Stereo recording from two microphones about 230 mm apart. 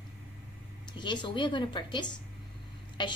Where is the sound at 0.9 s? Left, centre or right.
Centre.